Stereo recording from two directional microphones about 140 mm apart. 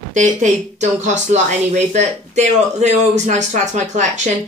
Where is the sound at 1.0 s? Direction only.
60° right (ahead or behind).